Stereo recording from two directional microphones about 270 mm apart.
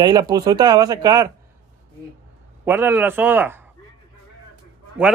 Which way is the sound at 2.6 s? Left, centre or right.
Centre.